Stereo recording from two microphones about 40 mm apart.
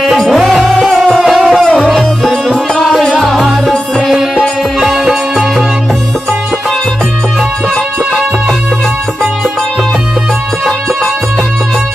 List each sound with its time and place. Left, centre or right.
0.2 s music: centre
4.1 s music: centre